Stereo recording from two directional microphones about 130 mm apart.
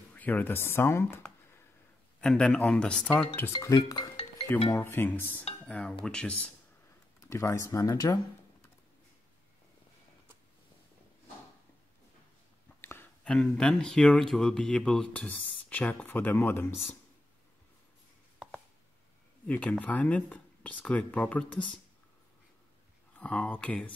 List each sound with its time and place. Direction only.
0.1 s speech: 10° left (ahead or behind)
2.1 s speech: 5° left (ahead or behind)
3.5 s speech: 30° left (ahead or behind)
4.6 s speech: 20° left (ahead or behind)
7.2 s speech: 25° left (ahead or behind)
12.8 s speech: 15° left (ahead or behind)
19.4 s speech: 10° left (ahead or behind)
23.1 s speech: 10° left (ahead or behind)